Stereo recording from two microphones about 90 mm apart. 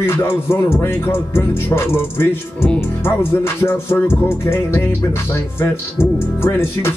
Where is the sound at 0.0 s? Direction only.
25° left (ahead or behind).